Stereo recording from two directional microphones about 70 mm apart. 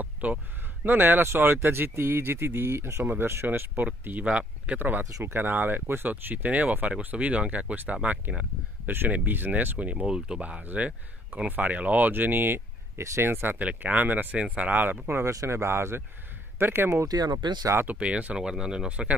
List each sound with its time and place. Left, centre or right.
0.0 s a sound: right
0.8 s speech: right; by 10.4 s centre
10.4 s speech: right
13.6 s speech: right
17.1 s speech: right
17.8 s speech: centre